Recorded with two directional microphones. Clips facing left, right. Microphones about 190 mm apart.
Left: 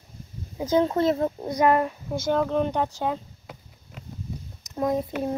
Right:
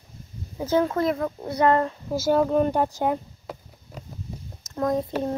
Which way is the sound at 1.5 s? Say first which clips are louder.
Right 1 dB; 10° left (ahead or behind).